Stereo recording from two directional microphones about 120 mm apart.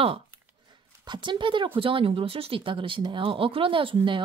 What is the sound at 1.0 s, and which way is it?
A woman's voice, 40° right (ahead or behind).